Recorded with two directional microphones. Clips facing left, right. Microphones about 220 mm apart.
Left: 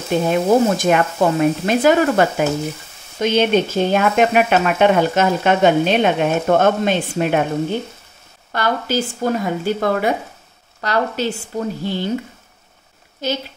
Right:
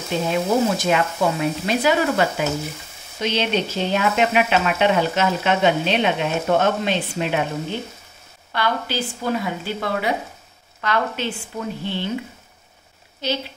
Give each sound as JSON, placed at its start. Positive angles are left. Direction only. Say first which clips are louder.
{"t": 0.3, "sound": "speech", "louder": "left 4 dB", "side_deg": 50}
{"t": 8.5, "sound": "speech", "louder": "left 3 dB", "side_deg": 45}
{"t": 13.2, "sound": "speech", "louder": "left 2 dB", "side_deg": 50}